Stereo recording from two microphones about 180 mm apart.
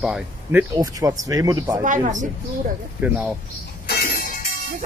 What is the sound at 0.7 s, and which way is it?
Speech, 20° right (ahead or behind).